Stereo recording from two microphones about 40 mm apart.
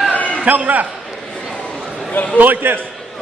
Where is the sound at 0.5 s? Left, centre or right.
Right.